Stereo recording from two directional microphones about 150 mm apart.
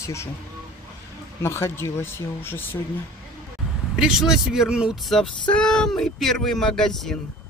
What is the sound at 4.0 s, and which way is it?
Speech, 5° right (ahead or behind).